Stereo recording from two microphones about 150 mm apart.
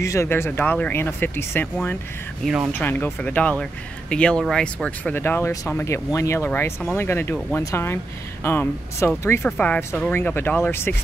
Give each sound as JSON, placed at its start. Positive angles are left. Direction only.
{"t": 0.0, "sound": "speech", "side_deg": 20}